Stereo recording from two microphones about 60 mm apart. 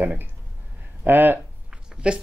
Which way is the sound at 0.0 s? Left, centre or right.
Right.